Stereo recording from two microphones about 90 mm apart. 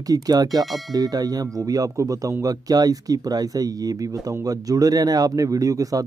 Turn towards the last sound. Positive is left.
turn(degrees=-40)  # may be behind; listen again after turning